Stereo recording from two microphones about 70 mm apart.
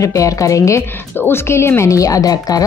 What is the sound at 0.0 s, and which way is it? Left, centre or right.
Speech, left.